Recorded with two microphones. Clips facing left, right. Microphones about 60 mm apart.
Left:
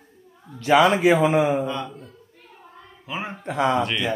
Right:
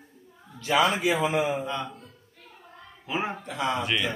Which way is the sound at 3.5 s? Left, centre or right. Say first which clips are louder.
Left 11 dB; left.